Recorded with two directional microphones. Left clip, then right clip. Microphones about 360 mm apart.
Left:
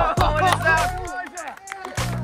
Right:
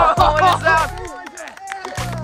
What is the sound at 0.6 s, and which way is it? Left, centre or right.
Speech, centre.